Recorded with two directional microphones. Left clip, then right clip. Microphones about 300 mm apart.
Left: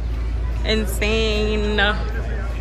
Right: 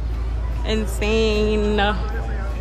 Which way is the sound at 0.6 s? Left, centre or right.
Centre.